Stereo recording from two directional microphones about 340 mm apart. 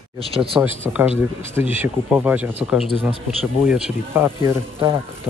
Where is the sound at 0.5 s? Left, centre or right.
Centre.